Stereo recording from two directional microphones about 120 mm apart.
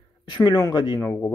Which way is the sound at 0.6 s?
35° left (ahead or behind).